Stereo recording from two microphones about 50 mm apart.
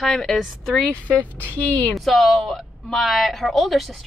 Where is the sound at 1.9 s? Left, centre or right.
Centre.